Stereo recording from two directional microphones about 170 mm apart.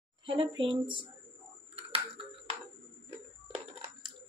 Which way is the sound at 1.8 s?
30° right (ahead or behind).